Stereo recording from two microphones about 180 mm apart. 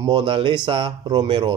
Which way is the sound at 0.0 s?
25° right (ahead or behind).